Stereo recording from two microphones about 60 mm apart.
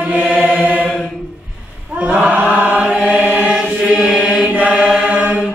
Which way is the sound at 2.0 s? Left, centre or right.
Right.